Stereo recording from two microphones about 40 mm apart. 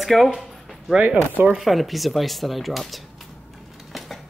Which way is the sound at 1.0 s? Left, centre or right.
Right.